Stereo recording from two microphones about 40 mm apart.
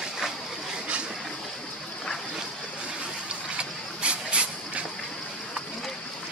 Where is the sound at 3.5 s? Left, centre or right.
Right.